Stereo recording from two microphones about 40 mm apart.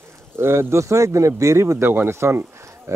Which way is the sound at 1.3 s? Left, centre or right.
Right.